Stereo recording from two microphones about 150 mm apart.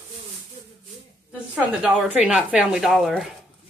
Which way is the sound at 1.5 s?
5° right (ahead or behind).